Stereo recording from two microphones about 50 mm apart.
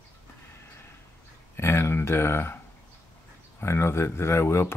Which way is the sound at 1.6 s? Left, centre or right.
Left.